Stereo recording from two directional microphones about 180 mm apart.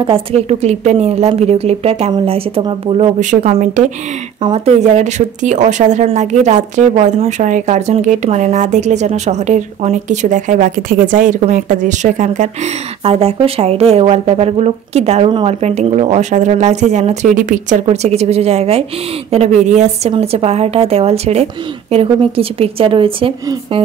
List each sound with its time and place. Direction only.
0.0 s speech: 30° right (ahead or behind)